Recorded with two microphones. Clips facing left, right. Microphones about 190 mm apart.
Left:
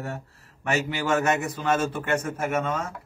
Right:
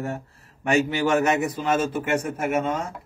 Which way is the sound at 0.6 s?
15° right (ahead or behind).